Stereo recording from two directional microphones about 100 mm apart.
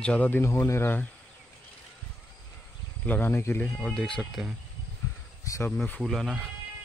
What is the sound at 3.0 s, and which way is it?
Speech, 20° left (ahead or behind).